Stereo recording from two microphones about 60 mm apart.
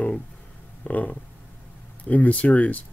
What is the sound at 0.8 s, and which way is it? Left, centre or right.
Speech, left.